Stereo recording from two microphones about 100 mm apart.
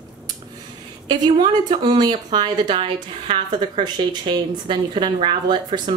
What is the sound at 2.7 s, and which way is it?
Speech, 70° right (ahead or behind).